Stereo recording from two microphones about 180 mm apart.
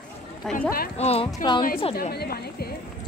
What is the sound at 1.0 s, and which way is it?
Speech, 35° left (ahead or behind).